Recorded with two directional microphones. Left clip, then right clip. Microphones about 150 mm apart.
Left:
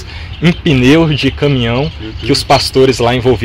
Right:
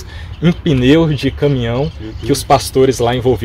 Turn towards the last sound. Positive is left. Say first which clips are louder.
# left 3 dB
turn(degrees=10)  # may be behind; listen again after turning